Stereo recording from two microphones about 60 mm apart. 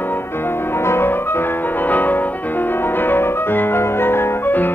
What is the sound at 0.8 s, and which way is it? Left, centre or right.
Music, left.